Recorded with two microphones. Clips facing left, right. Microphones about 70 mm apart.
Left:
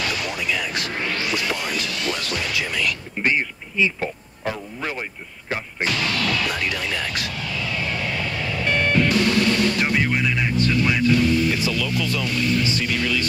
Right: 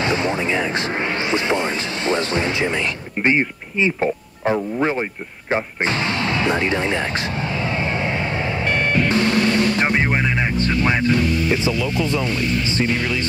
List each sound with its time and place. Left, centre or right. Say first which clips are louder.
0.0 s a sound: right 6 dB; right
5.5 s music: right 5 dB; right
10.7 s speech: right 1 dB; right